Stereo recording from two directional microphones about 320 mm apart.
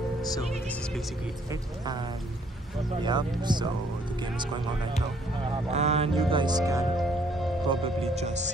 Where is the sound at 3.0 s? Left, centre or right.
Centre.